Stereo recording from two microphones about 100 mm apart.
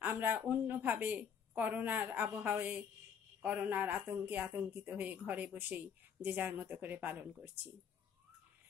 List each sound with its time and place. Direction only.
0.0 s speech: 20° right (ahead or behind)